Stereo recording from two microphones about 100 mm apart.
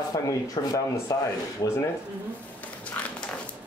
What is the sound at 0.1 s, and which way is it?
Speech, 35° left (ahead or behind).